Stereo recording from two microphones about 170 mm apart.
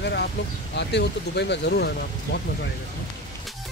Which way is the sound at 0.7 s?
90° left.